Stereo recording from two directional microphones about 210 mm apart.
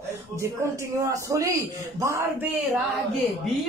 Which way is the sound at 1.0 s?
15° right (ahead or behind).